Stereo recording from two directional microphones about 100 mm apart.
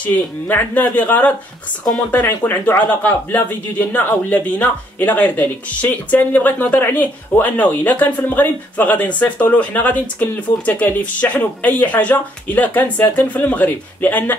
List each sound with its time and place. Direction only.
0.0 s speech: 20° left (ahead or behind)